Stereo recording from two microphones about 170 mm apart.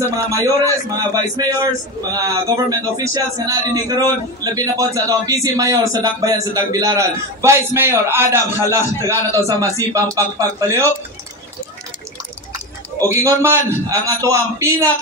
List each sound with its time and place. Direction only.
0.3 s a man's voice: 20° right (ahead or behind)
13.0 s speech: 15° right (ahead or behind)